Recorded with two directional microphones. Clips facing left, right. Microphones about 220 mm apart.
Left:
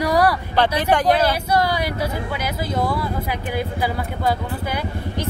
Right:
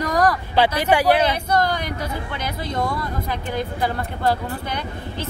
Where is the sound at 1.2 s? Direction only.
5° left (ahead or behind).